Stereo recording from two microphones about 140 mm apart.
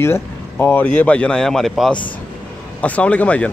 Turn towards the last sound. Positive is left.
turn(degrees=10)  # may be behind; listen again after turning